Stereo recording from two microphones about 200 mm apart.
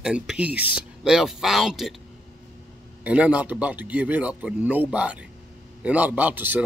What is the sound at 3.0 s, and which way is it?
A man's voice, 5° right (ahead or behind).